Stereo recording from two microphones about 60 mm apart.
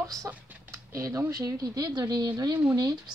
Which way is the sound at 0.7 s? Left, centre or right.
Right.